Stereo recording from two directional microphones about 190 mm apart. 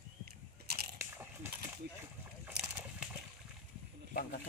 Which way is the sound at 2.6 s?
60° right (ahead or behind).